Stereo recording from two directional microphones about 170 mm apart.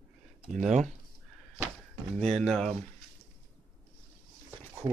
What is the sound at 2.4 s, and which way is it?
Speech, 5° left (ahead or behind).